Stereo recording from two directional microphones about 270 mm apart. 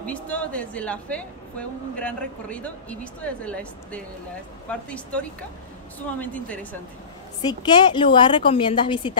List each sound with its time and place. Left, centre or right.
0.0 s a woman's voice: centre
7.4 s a woman's voice: centre